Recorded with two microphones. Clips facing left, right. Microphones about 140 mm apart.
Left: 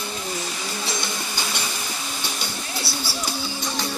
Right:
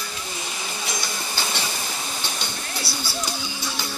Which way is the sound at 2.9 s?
25° left (ahead or behind).